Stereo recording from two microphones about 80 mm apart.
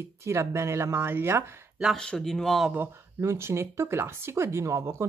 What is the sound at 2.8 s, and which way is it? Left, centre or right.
Speech, right.